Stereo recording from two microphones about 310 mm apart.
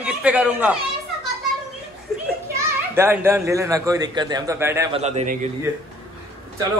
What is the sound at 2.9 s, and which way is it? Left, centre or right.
A man's voice, centre.